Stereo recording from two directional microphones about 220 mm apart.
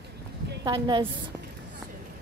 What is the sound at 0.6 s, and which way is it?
Speech, 20° right (ahead or behind).